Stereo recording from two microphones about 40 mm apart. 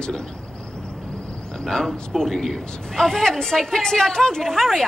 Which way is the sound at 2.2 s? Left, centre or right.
Centre.